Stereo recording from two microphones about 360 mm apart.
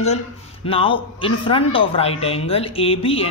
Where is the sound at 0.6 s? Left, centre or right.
Centre.